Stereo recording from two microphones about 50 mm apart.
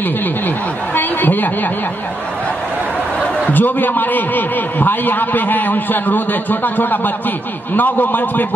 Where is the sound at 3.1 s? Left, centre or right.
Centre.